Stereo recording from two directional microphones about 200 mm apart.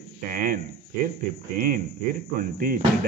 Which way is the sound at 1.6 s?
50° right (ahead or behind).